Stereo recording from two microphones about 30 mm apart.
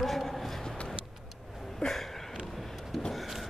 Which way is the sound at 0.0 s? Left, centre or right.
Centre.